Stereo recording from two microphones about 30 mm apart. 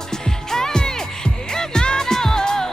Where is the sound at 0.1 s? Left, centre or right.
Centre.